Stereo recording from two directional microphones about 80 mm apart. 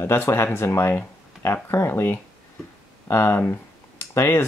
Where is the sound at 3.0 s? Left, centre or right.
Left.